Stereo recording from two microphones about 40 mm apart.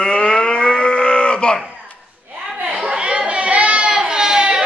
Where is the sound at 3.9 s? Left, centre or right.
Centre.